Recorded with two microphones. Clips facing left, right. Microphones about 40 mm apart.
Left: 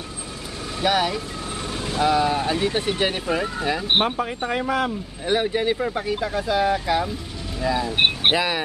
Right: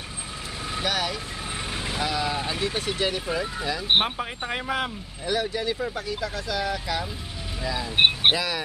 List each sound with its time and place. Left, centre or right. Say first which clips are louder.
0.8 s speech: left 7 dB; centre
1.7 s vehicle: left 3 dB; centre
2.0 s speech: left 9 dB; centre
3.9 s speech: even; centre
5.2 s speech: left 5 dB; left
7.6 s speech: left 2 dB; centre
8.3 s speech: left 3 dB; left